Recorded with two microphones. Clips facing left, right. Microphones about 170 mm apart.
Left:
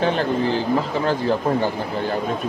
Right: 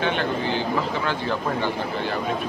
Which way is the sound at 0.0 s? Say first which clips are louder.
Left 4 dB; 35° left (ahead or behind).